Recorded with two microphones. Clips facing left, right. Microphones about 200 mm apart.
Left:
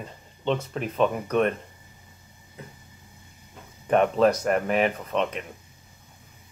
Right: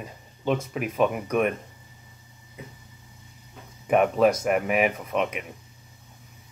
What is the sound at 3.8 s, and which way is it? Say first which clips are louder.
Speech: even; 5° right (ahead or behind).